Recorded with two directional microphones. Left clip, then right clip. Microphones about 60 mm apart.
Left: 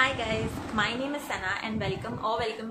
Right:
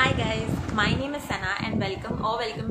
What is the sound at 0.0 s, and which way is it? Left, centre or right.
A woman's voice, right.